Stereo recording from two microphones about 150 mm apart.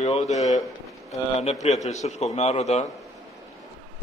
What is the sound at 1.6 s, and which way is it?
A man's voice, 50° left (ahead or behind).